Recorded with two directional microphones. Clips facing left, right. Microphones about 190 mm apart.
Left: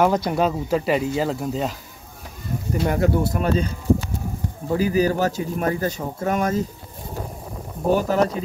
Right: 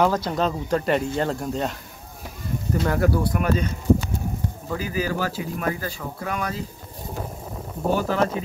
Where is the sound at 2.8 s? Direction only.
25° left (ahead or behind).